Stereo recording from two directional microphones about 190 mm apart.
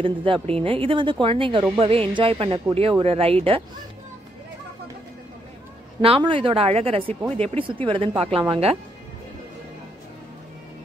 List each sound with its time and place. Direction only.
0.0 s speech: 25° right (ahead or behind)
5.9 s speech: 25° right (ahead or behind)